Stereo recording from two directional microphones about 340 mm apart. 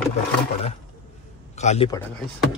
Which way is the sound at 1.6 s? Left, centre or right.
Centre.